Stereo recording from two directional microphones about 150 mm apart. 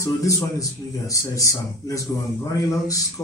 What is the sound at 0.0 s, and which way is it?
Speech, 20° left (ahead or behind).